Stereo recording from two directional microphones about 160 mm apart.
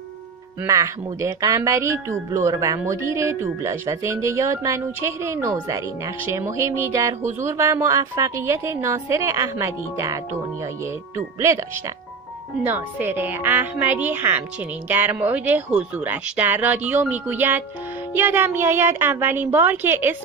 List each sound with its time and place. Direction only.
0.7 s speech: 20° right (ahead or behind)
12.6 s speech: 15° right (ahead or behind)